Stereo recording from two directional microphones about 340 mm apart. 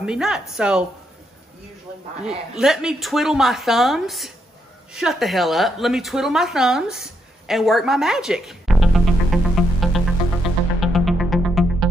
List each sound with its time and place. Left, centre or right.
0.0 s speech: centre
2.2 s speech: centre
10.4 s music: centre